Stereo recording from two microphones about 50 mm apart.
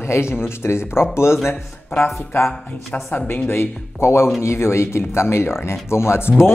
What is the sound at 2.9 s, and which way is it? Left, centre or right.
Speech, left.